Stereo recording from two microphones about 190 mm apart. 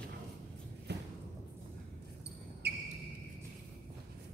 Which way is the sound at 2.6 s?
60° right (ahead or behind).